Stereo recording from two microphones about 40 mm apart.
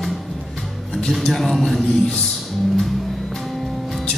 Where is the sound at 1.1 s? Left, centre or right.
Centre.